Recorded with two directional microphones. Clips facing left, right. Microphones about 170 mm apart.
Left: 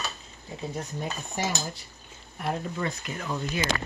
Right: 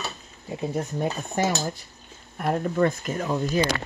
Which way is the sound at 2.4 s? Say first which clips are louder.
Right 8 dB; 50° right (ahead or behind).